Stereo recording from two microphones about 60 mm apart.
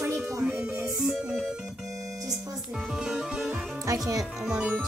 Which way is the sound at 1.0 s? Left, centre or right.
Centre.